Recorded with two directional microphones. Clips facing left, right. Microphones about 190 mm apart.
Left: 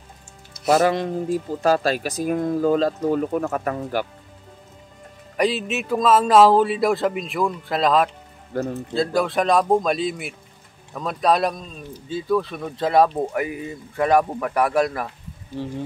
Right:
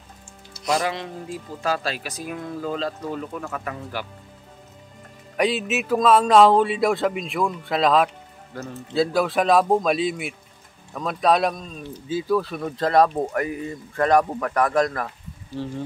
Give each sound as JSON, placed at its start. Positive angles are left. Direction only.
{"t": 0.7, "sound": "speech", "side_deg": 45}
{"t": 5.4, "sound": "a man's voice", "side_deg": 0}